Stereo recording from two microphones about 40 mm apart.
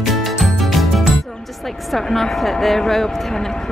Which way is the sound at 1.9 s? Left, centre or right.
Centre.